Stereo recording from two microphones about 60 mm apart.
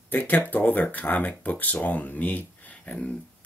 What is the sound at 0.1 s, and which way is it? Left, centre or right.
Speech, left.